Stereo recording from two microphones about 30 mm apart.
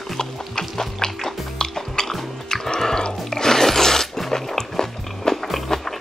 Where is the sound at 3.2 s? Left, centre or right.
Centre.